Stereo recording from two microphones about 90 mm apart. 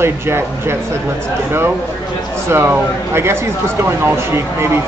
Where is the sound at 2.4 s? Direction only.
25° right (ahead or behind).